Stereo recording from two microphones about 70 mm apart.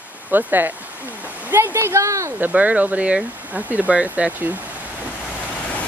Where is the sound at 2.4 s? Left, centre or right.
Right.